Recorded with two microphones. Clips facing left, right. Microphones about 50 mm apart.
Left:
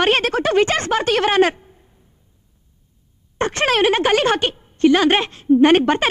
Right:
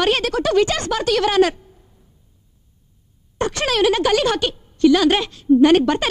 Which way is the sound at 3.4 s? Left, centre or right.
Left.